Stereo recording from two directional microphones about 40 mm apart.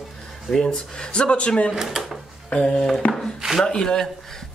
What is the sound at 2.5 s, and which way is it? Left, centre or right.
A man's voice, centre.